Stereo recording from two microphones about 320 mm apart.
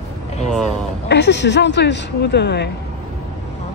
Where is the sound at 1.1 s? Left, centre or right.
Left.